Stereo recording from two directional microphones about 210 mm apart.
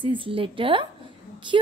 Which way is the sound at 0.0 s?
25° right (ahead or behind).